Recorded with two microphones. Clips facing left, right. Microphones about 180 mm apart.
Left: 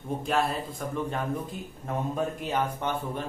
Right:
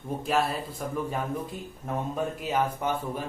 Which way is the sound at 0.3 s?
5° right (ahead or behind).